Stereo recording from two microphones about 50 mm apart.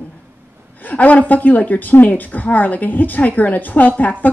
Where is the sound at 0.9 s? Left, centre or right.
Left.